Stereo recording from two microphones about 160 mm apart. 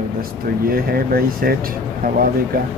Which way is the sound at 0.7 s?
65° right (ahead or behind).